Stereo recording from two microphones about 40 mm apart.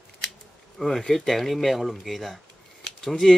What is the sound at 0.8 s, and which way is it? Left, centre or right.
Speech, centre.